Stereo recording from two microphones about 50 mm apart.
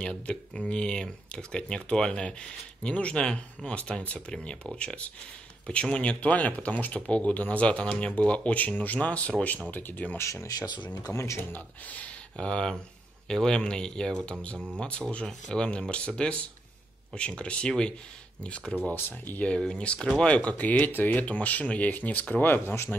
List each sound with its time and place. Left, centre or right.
0.3 s speech: centre; by 10.1 s left
10.1 s speech: left
11.1 s speech: centre
11.5 s speech: left
18.9 s speech: left
19.7 s speech: left
21.3 s speech: left